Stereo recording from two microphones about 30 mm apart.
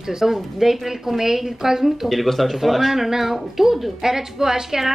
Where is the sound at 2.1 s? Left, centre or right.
Centre.